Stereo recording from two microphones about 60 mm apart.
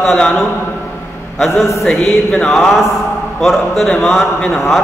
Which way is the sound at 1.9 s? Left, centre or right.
Centre.